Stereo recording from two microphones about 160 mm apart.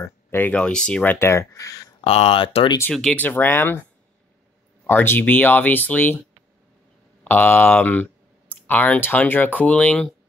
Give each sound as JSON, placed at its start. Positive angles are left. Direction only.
{"t": 0.0, "sound": "speech", "side_deg": 15}
{"t": 2.0, "sound": "speech", "side_deg": 35}
{"t": 2.9, "sound": "speech", "side_deg": 5}
{"t": 4.8, "sound": "speech", "side_deg": 15}
{"t": 7.2, "sound": "speech", "side_deg": 15}